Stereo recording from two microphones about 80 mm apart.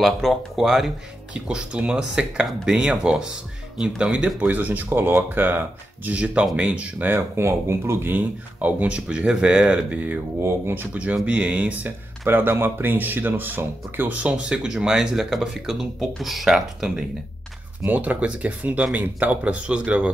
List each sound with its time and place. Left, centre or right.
0.0 s speech: centre
1.3 s speech: centre
17.8 s speech: centre